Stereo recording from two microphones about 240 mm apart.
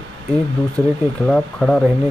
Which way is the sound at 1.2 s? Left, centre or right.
Centre.